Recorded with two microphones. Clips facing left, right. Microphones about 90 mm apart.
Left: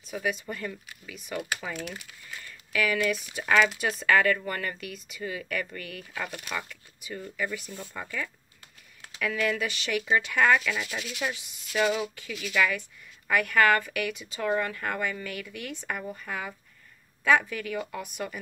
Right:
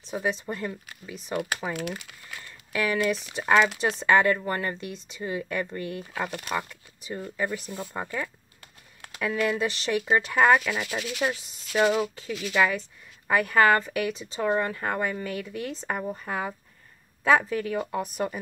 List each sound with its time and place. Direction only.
0.1 s a woman's voice: 30° right (ahead or behind)
1.3 s speech: 50° right (ahead or behind)
1.8 s speech: 90° right
2.4 s a woman's voice: 30° right (ahead or behind)